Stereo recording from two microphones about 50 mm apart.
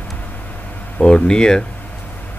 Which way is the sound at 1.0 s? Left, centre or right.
Centre.